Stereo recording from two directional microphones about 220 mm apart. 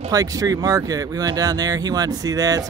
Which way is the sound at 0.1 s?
15° right (ahead or behind).